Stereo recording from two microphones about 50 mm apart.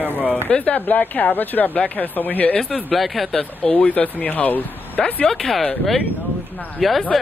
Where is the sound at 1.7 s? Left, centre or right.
Left.